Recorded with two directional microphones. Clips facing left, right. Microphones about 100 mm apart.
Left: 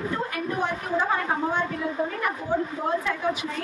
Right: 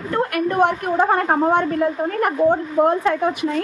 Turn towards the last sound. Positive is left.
turn(degrees=-55)  # may be behind; listen again after turning